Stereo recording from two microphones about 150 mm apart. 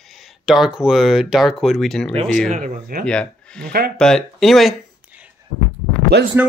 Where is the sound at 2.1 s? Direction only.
55° right (ahead or behind).